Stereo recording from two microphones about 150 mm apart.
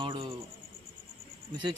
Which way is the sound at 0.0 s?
30° right (ahead or behind).